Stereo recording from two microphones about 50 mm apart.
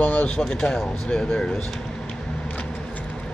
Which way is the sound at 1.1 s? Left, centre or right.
Centre.